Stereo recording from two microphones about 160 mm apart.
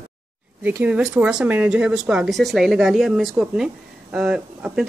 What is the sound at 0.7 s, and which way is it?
Speech, 10° right (ahead or behind).